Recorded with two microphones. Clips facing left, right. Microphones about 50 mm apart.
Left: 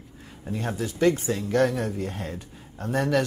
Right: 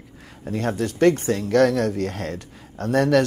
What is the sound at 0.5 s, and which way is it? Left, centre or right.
Speech, right.